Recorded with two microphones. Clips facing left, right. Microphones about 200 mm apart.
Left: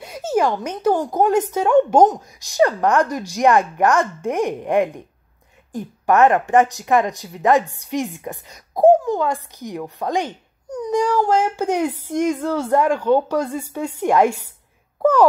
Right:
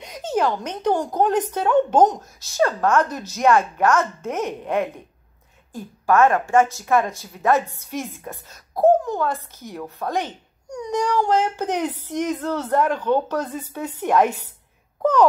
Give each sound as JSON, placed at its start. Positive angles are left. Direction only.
{"t": 0.0, "sound": "a child's voice", "side_deg": 10}